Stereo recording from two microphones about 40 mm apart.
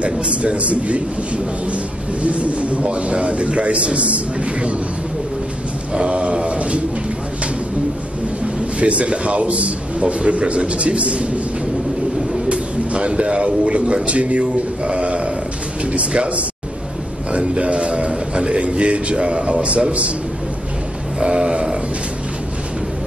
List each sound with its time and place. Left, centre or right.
0.0 s a man's voice: right
5.9 s mantra: right
8.7 s a man's voice: right
12.4 s a man's voice: right
21.2 s a sound: centre